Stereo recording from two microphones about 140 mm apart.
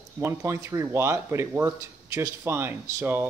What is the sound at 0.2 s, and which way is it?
Speech, 20° right (ahead or behind).